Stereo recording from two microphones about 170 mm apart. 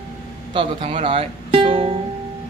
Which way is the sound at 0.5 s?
35° right (ahead or behind).